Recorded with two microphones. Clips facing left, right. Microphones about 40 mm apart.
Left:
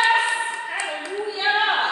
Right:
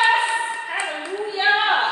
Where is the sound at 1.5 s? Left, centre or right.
Centre.